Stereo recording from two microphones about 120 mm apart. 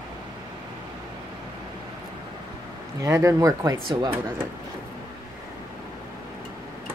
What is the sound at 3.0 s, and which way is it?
Speech, 25° right (ahead or behind).